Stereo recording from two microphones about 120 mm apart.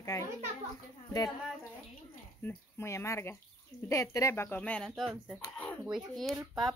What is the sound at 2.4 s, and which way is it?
Speech, 15° left (ahead or behind).